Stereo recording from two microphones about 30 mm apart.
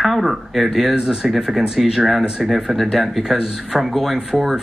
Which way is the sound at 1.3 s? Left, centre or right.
Centre.